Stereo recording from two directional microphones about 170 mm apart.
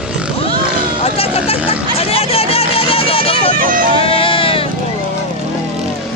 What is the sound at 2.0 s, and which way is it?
Vehicle, 35° left (ahead or behind).